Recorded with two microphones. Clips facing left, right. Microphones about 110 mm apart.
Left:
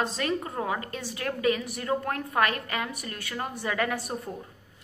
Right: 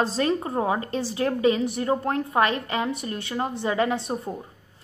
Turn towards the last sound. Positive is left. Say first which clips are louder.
# right 5 dB
turn(degrees=-25)  # may be behind; listen again after turning